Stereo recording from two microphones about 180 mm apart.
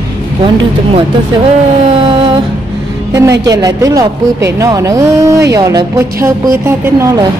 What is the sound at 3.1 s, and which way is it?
A woman's voice, 20° right (ahead or behind).